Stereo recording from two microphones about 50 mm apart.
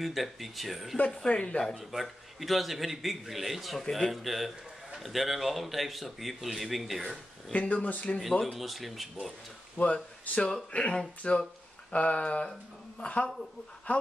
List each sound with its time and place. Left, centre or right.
0.0 s a man's voice: centre
1.1 s speech: centre
1.8 s a man's voice: centre
7.5 s speech: left
8.2 s a man's voice: centre
10.2 s speech: left